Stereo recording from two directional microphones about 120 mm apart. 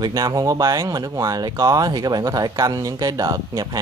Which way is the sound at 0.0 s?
30° right (ahead or behind).